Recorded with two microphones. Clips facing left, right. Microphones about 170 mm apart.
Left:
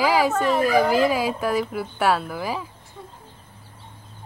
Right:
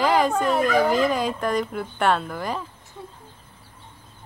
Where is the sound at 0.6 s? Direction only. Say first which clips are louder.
Left 2 dB; 5° left (ahead or behind).